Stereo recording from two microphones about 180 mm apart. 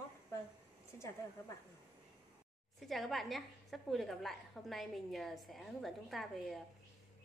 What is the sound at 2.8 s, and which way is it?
A woman's voice, centre (ahead or behind).